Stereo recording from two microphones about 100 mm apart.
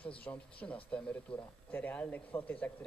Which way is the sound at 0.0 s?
15° left (ahead or behind).